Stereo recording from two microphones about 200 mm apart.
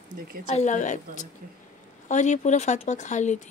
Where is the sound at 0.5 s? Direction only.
35° left (ahead or behind).